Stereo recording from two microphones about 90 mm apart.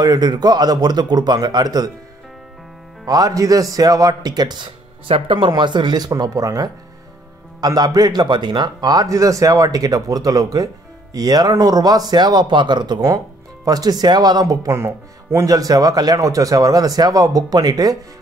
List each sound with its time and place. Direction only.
0.0 s speech: 50° right (ahead or behind)
3.1 s speech: 40° right (ahead or behind)
5.0 s speech: 80° right
5.5 s speech: 55° right (ahead or behind)